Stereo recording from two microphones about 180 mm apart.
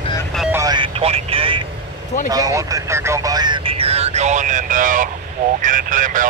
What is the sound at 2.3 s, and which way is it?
Speech, 20° right (ahead or behind).